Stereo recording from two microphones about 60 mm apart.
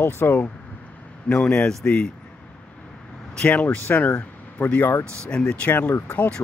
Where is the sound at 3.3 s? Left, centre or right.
Centre.